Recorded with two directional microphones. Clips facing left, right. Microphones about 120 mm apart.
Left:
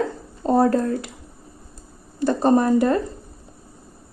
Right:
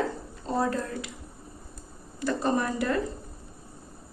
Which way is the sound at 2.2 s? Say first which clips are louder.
Left 9 dB; 35° left (ahead or behind).